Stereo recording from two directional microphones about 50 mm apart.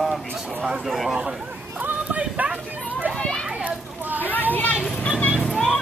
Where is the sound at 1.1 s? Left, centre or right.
Centre.